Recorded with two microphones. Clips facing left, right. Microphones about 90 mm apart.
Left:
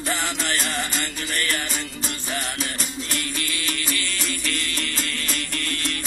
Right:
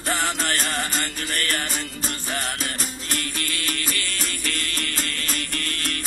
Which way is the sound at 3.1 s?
45° right (ahead or behind).